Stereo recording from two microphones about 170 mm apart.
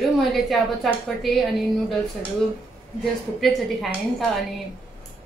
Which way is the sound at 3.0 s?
Centre (ahead or behind).